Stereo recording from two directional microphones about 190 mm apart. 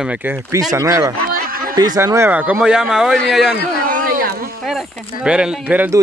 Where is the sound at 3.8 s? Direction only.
45° right (ahead or behind).